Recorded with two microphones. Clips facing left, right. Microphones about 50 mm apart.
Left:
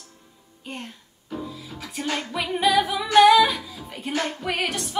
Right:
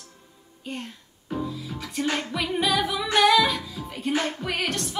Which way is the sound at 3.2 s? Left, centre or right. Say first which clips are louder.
Left 5 dB; centre.